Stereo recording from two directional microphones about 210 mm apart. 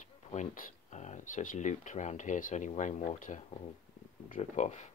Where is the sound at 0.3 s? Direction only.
35° left (ahead or behind).